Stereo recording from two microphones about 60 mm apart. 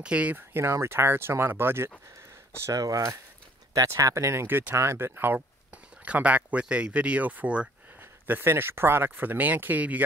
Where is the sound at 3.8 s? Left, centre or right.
Right.